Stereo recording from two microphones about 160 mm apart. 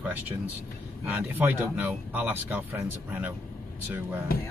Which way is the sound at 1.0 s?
10° right (ahead or behind).